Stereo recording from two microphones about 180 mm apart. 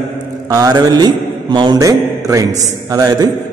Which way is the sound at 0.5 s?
20° right (ahead or behind).